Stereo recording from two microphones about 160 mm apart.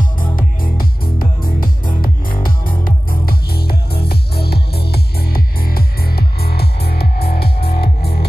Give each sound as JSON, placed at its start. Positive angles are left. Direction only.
{"t": 0.0, "sound": "music", "side_deg": 60}